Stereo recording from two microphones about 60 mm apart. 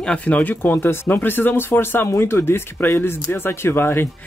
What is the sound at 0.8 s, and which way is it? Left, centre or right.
Speech, left.